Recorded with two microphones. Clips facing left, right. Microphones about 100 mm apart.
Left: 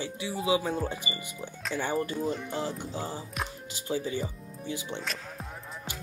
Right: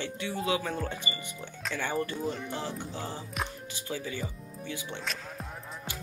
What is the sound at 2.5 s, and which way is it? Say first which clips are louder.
Speech: left 3 dB; 15° left (ahead or behind).